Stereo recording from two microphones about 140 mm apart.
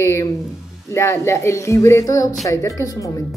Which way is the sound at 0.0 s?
20° left (ahead or behind).